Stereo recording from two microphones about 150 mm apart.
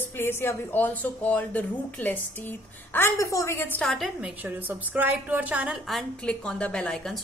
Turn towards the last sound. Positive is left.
turn(degrees=5)  # may be behind; listen again after turning